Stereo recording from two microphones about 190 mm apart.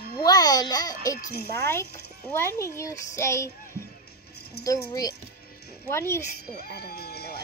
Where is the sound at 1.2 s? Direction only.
55° left (ahead or behind).